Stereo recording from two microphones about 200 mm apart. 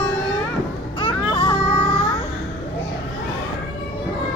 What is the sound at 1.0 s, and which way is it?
Children playing, 25° left (ahead or behind).